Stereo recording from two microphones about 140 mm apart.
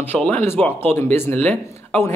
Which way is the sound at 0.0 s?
10° left (ahead or behind).